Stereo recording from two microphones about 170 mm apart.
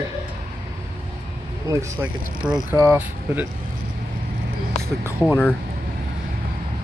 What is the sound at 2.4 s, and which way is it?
Speech, 5° right (ahead or behind).